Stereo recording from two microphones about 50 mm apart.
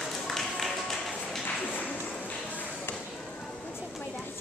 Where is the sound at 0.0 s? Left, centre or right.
Centre.